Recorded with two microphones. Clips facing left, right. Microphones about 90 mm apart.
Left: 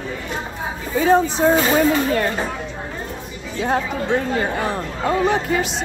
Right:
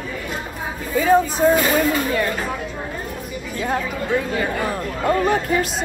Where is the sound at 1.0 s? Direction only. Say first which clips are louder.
Even; 30° left (ahead or behind).